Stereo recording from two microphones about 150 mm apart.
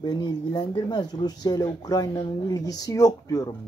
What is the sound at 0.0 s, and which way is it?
Speech, 25° left (ahead or behind).